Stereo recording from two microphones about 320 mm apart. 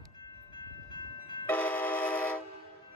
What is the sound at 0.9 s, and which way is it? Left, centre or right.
Train, centre.